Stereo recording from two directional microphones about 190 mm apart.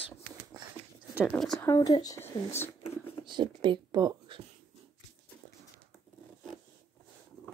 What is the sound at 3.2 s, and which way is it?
Speech, 25° right (ahead or behind).